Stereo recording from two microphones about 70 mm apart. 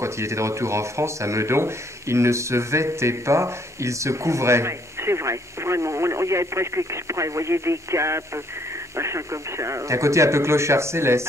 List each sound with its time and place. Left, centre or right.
0.0 s speech: right